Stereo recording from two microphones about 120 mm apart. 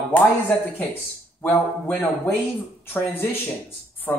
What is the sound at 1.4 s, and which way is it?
Speech, 15° left (ahead or behind).